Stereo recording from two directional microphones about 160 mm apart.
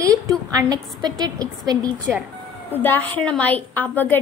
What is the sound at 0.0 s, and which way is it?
A woman's voice, 20° right (ahead or behind).